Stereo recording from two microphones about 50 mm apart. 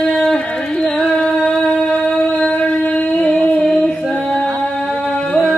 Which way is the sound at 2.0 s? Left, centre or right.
Centre.